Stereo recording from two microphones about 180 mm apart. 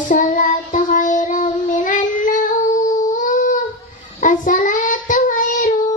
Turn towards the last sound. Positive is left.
turn(degrees=45)  # may be behind; listen again after turning